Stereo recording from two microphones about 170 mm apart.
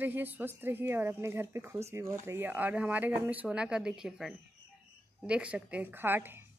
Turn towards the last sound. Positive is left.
turn(degrees=-10)  # may be behind; listen again after turning